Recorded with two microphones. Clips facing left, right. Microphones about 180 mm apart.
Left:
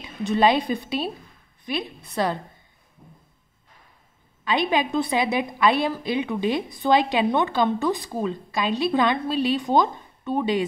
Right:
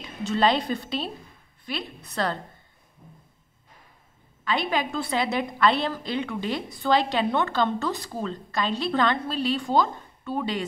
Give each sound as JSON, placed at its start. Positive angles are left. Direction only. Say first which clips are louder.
{"t": 0.0, "sound": "a woman's voice", "louder": "left 3 dB", "side_deg": 15}
{"t": 4.5, "sound": "a woman's voice", "louder": "left 4 dB", "side_deg": 15}